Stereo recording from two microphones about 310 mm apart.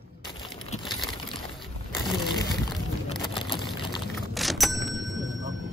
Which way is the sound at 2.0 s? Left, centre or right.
Centre.